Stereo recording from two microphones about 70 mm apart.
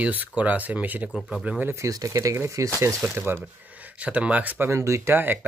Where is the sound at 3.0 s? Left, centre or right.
Right.